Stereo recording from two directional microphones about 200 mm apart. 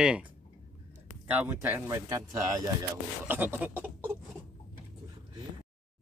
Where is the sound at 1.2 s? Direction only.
10° right (ahead or behind).